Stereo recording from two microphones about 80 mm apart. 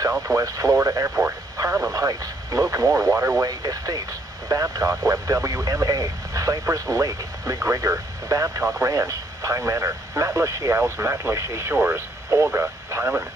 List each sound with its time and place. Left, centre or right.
0.3 s speech: right
1.0 s speech: right
1.6 s speech: right
3.4 s speech: right
11.7 s speech: right
12.4 s speech: right